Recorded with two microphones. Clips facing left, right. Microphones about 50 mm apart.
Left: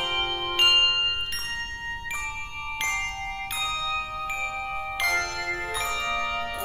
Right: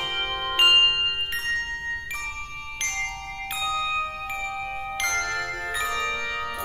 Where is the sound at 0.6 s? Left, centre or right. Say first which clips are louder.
Right 3 dB; centre.